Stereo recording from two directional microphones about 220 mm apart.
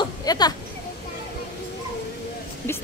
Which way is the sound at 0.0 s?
20° left (ahead or behind).